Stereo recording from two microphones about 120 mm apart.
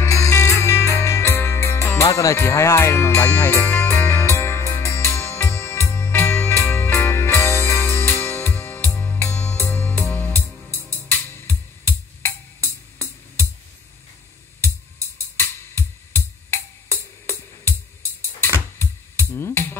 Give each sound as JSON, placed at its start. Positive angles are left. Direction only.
{"t": 0.0, "sound": "music", "side_deg": 25}
{"t": 14.6, "sound": "music", "side_deg": 20}
{"t": 18.8, "sound": "music", "side_deg": 20}